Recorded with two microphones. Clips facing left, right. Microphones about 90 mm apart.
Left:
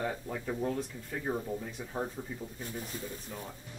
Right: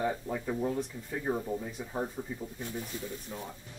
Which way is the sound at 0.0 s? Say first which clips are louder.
Right 3 dB; 5° right (ahead or behind).